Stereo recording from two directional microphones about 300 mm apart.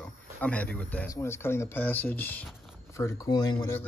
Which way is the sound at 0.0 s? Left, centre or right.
Centre.